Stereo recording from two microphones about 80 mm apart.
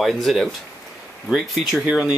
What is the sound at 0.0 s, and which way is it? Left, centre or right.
Speech, centre.